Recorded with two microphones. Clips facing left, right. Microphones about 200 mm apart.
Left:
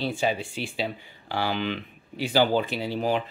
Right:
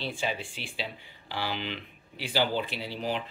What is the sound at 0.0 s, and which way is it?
Speech, 45° left (ahead or behind).